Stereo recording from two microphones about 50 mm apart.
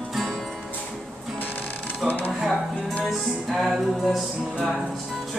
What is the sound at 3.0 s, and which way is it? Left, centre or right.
Music, centre.